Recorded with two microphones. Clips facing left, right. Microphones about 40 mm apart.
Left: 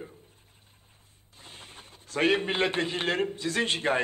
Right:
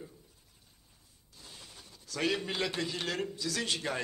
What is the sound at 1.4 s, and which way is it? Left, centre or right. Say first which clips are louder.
A man's voice: left 5 dB; left.